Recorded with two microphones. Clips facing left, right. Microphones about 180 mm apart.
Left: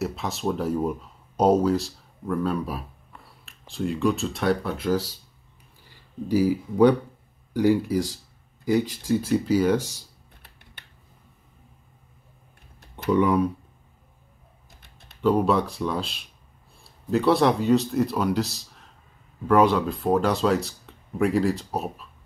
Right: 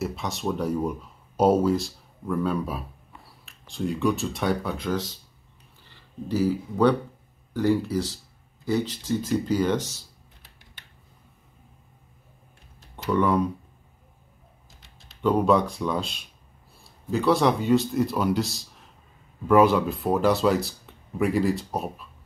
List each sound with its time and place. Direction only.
0.0 s speech: centre (ahead or behind)
10.4 s a sound: 60° left (ahead or behind)
13.1 s speech: 15° left (ahead or behind)
14.8 s typing: 55° left (ahead or behind)
15.2 s speech: 5° left (ahead or behind)